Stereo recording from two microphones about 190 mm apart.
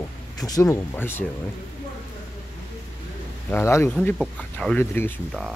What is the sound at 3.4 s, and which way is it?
Speech, 10° left (ahead or behind).